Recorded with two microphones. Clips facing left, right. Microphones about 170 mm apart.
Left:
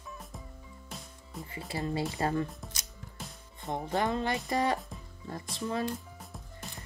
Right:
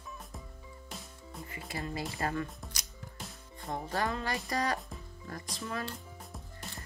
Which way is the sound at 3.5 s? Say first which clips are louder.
Left 3 dB; 20° left (ahead or behind).